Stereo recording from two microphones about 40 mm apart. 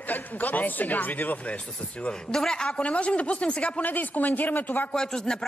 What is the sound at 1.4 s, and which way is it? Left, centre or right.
Speech, left.